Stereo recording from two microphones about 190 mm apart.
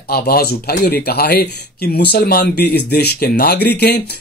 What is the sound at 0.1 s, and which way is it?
Speech, 55° left (ahead or behind).